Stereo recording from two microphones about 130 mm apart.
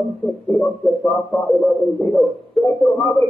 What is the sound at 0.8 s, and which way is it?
A man's voice, 5° left (ahead or behind).